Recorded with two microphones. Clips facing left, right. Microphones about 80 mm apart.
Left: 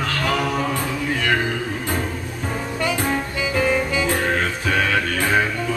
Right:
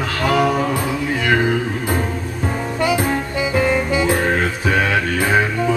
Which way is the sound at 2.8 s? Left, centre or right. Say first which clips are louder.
Right 4 dB; centre.